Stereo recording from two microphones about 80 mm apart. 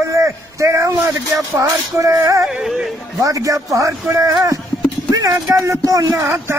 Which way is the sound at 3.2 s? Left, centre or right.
Right.